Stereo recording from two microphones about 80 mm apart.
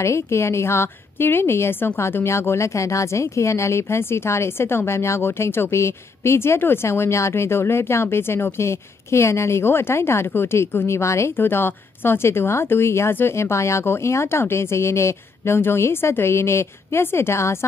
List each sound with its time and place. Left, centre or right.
0.0 s speech: left